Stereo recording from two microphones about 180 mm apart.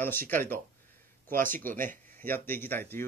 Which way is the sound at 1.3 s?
50° right (ahead or behind).